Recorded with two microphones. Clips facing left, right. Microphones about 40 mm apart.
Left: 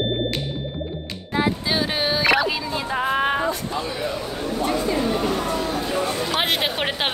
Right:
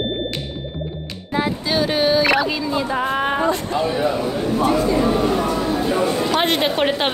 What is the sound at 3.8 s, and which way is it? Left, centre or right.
A man's voice, right.